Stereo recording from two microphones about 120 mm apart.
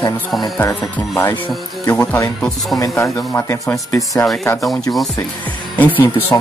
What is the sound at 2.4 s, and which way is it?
Speech, centre (ahead or behind).